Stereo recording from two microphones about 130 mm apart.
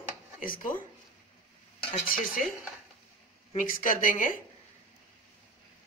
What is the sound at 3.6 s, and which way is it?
Speech, 90° left.